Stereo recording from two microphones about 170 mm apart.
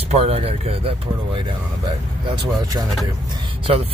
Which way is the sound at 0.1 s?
35° right (ahead or behind).